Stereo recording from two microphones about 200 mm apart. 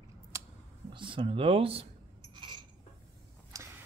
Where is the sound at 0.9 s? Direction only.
25° right (ahead or behind).